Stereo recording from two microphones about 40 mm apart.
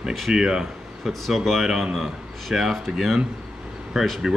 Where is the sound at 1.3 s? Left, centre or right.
Centre.